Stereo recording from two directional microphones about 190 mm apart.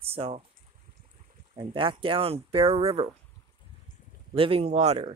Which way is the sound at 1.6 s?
25° right (ahead or behind).